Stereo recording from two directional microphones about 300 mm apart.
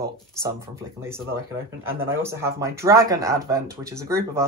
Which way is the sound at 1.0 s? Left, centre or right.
Centre.